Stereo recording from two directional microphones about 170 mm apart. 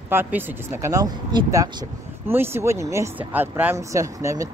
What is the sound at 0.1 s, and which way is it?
Speech, 10° right (ahead or behind).